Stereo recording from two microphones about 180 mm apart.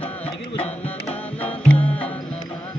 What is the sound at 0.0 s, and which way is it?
Music, 10° left (ahead or behind).